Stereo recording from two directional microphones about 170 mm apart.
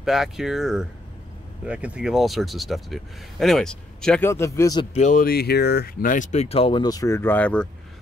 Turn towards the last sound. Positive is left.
turn(degrees=5)  # may be behind; listen again after turning